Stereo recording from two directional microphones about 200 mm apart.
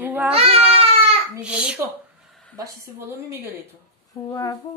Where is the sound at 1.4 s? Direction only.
5° right (ahead or behind).